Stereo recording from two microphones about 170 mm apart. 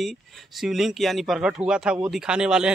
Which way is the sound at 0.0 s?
Centre (ahead or behind).